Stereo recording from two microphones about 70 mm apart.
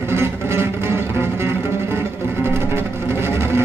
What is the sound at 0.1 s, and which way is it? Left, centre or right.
Music, right.